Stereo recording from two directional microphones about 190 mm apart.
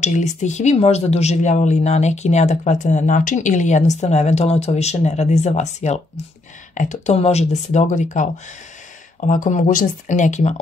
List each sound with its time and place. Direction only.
0.0 s speech: 40° left (ahead or behind)